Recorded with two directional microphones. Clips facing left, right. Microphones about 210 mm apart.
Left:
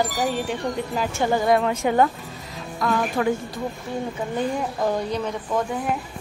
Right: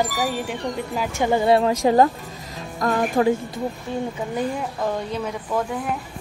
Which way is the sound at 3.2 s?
20° right (ahead or behind).